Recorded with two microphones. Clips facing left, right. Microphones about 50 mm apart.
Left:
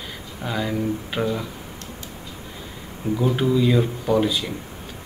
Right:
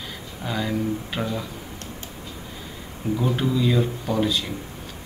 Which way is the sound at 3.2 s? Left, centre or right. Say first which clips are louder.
Left 4 dB; centre.